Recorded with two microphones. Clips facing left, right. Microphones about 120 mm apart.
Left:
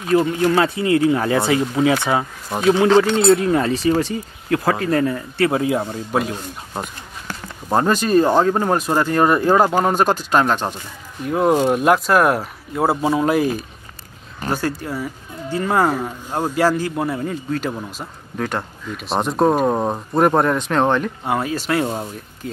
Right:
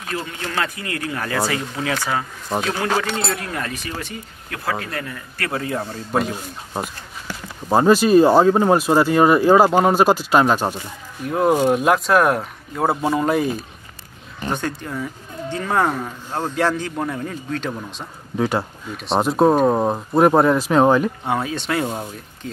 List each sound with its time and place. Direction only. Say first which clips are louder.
0.1 s speech: left 13 dB; 35° left (ahead or behind)
0.6 s speech: left 9 dB; 25° left (ahead or behind)
2.5 s speech: right 1 dB; 5° left (ahead or behind)
3.3 s speech: left 11 dB; 25° left (ahead or behind)
5.6 s speech: left 5 dB; 15° left (ahead or behind)
6.1 s speech: even; centre (ahead or behind)
18.4 s speech: right 3 dB; 10° right (ahead or behind)